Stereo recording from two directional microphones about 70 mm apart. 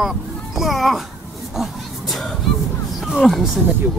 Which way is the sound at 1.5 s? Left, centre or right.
Centre.